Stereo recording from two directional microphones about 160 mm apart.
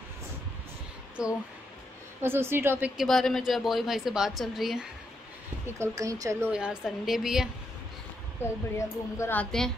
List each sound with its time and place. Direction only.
1.2 s a woman's voice: 5° right (ahead or behind)
3.0 s a woman's voice: centre (ahead or behind)
5.8 s a woman's voice: 20° right (ahead or behind)
6.5 s a woman's voice: 5° right (ahead or behind)
8.4 s a woman's voice: 20° left (ahead or behind)